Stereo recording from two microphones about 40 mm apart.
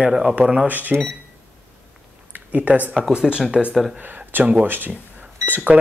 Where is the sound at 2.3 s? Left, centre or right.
Right.